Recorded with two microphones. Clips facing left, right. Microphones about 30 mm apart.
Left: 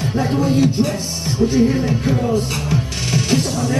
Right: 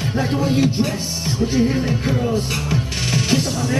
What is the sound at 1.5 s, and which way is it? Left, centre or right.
Speech, centre.